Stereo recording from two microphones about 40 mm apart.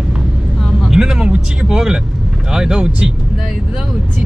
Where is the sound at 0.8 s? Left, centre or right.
Centre.